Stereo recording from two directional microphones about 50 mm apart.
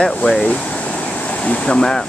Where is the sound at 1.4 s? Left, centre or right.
Centre.